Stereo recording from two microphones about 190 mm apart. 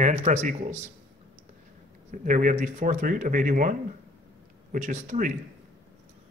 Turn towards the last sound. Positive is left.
turn(degrees=-40)  # may be behind; listen again after turning